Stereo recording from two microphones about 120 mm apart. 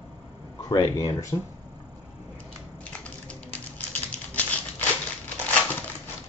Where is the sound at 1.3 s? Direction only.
20° left (ahead or behind).